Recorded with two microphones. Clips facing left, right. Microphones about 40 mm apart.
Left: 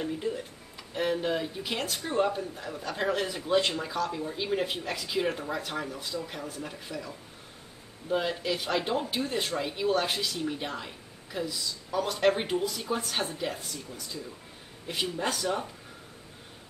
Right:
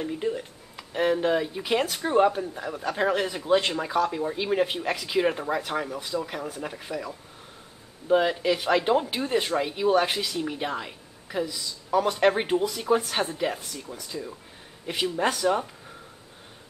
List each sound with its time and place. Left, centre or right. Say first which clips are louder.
0.2 s a man's voice: right 4 dB; right
8.1 s a man's voice: right 7 dB; right